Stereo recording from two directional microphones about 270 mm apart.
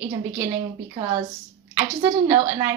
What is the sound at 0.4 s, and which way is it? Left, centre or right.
Speech, centre.